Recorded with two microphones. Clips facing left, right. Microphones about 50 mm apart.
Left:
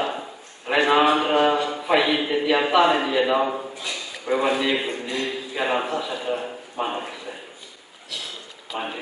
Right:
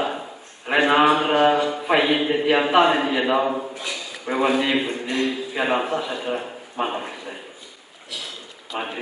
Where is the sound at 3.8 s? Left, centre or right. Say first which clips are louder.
Even; centre.